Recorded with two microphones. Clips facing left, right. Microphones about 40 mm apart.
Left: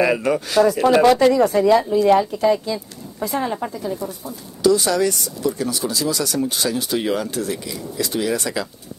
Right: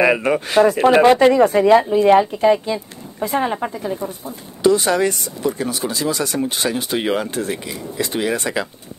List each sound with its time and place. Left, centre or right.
0.0 s speech: right